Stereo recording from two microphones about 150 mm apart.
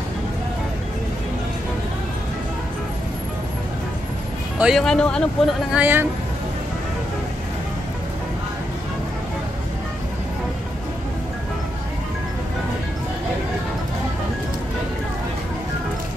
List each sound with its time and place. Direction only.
4.6 s speech: centre (ahead or behind)
5.7 s speech: 10° right (ahead or behind)